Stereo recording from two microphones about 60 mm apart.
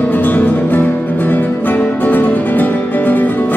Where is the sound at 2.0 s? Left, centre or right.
Left.